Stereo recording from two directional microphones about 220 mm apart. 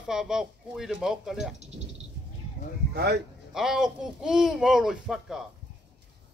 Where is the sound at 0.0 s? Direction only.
Centre (ahead or behind).